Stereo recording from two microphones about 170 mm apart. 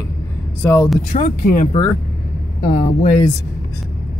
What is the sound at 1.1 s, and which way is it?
Speech, 45° left (ahead or behind).